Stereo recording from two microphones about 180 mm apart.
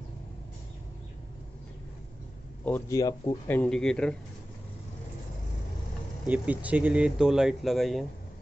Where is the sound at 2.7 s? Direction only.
15° left (ahead or behind).